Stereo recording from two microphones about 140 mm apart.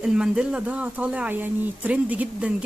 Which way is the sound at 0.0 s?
5° right (ahead or behind).